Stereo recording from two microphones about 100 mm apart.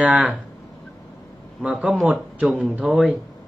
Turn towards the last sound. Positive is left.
turn(degrees=-10)  # may be behind; listen again after turning